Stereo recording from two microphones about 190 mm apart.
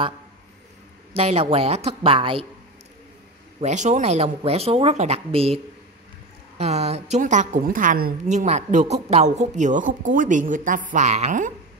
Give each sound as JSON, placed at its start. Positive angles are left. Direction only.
{"t": 1.1, "sound": "a woman's voice", "side_deg": -30}
{"t": 3.6, "sound": "a woman's voice", "side_deg": -40}
{"t": 6.6, "sound": "a woman's voice", "side_deg": -35}